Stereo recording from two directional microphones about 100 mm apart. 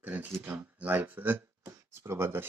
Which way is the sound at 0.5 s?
20° right (ahead or behind).